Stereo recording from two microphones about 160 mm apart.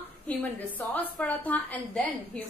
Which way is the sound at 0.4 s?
10° left (ahead or behind).